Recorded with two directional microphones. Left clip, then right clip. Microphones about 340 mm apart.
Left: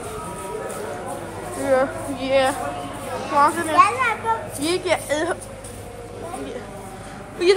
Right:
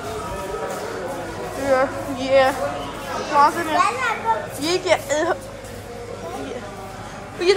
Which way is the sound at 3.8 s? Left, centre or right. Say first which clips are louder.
Left 5 dB; left.